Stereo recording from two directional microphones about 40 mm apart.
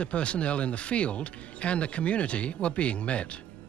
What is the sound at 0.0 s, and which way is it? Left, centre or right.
Speech, left.